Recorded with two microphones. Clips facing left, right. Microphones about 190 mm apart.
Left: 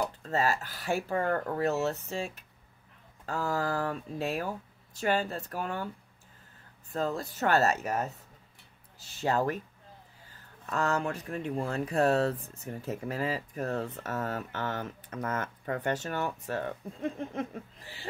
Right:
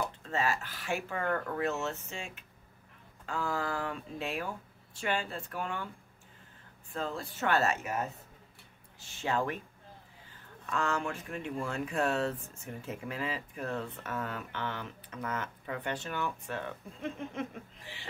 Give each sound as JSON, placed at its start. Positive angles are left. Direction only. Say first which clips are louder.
{"t": 0.2, "sound": "speech", "louder": "left 3 dB", "side_deg": 40}
{"t": 6.9, "sound": "speech", "louder": "left 5 dB", "side_deg": 40}
{"t": 9.2, "sound": "speech", "louder": "left 4 dB", "side_deg": 40}